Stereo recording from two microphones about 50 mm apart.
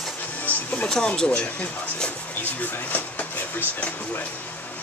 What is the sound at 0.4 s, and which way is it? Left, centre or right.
Music, left.